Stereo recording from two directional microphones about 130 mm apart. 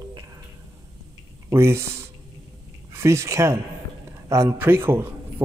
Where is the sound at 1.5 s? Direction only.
20° right (ahead or behind).